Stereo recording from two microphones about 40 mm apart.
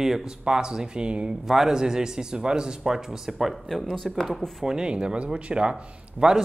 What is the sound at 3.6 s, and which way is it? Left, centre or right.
Speech, centre.